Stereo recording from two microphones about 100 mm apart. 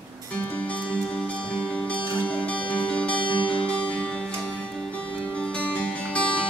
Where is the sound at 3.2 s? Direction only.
55° left (ahead or behind).